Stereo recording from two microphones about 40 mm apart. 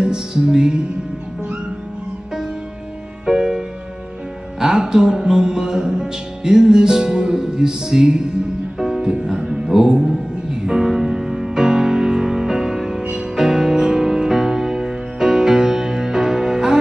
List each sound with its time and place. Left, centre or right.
0.0 s music: centre
3.3 s music: centre